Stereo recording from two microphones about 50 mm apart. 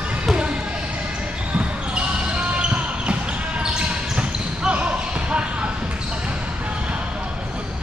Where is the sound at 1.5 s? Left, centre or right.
Right.